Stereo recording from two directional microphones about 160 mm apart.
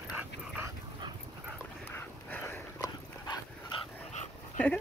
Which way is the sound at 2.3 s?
15° left (ahead or behind).